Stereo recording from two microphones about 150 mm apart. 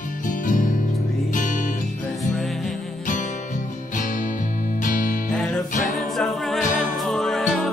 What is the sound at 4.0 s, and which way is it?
Music, 60° left (ahead or behind).